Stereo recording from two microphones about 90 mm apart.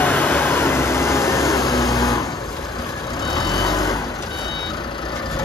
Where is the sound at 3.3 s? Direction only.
55° left (ahead or behind).